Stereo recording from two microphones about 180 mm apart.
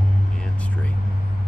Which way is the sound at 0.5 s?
10° left (ahead or behind).